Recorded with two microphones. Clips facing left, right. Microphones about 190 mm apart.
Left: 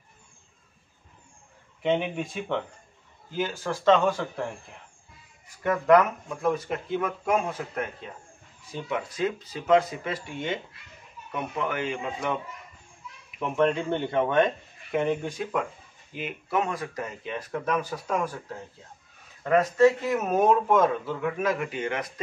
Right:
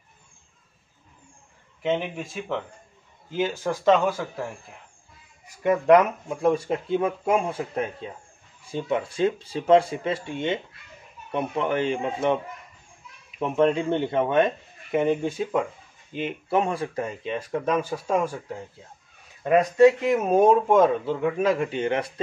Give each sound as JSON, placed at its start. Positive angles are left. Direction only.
{"t": 1.8, "sound": "speech", "side_deg": 0}
{"t": 3.3, "sound": "speech", "side_deg": -20}
{"t": 5.6, "sound": "speech", "side_deg": -15}
{"t": 6.4, "sound": "a man's voice", "side_deg": -30}
{"t": 13.4, "sound": "speech", "side_deg": -25}
{"t": 15.2, "sound": "a man's voice", "side_deg": -25}
{"t": 19.4, "sound": "speech", "side_deg": -15}
{"t": 20.2, "sound": "a man's voice", "side_deg": -25}